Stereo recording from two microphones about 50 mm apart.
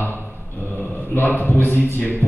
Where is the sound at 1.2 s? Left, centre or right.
Left.